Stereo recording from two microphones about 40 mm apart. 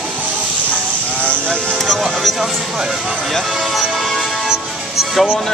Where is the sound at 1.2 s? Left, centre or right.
Left.